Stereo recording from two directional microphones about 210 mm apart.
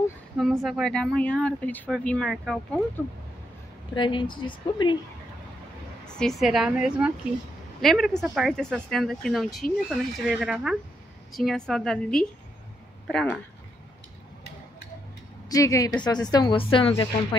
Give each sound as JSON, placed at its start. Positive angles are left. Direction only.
{"t": 0.4, "sound": "speech", "side_deg": 0}
{"t": 3.9, "sound": "speech", "side_deg": 20}
{"t": 6.0, "sound": "a woman's voice", "side_deg": 5}
{"t": 15.5, "sound": "a woman's voice", "side_deg": 15}